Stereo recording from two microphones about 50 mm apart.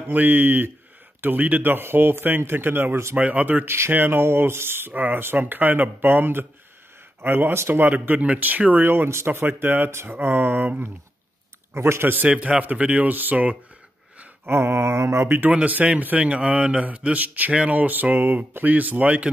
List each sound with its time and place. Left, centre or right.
0.0 s speech: right
3.2 s speech: right
3.6 s mantra: right
3.9 s speech: right
4.9 s speech: right
8.8 s speech: right
9.8 s mantra: right
10.2 s speech: right
11.7 s mantra: right
12.3 s speech: right
14.4 s mantra: right
15.6 s speech: right